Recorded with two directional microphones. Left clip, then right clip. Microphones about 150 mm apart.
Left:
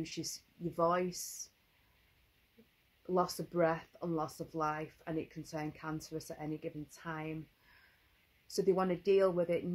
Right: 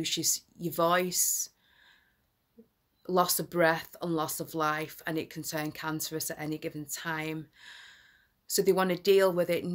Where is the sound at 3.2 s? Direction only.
15° right (ahead or behind).